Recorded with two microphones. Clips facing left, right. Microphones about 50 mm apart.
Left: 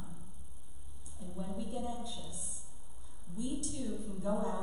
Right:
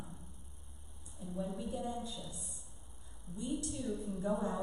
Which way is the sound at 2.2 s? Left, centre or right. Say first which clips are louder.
Even; right.